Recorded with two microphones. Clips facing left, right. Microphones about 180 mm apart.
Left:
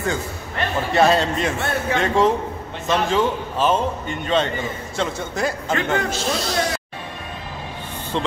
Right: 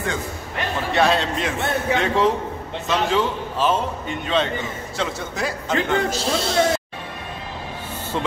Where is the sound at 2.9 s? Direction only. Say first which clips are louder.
Left 2 dB; centre (ahead or behind).